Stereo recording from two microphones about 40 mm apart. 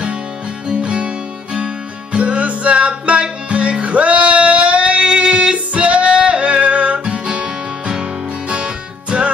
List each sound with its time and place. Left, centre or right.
0.7 s music: right
8.5 s music: right